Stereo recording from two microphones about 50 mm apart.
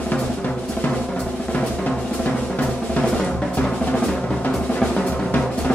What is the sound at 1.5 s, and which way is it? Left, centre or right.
Drum, left.